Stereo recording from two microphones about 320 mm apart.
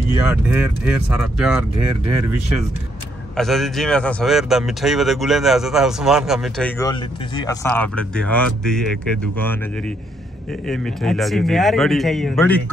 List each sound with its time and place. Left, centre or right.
0.3 s speech: centre
3.3 s speech: centre
6.8 s speech: centre